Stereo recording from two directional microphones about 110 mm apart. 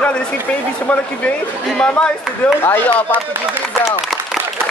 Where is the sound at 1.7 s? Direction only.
5° left (ahead or behind).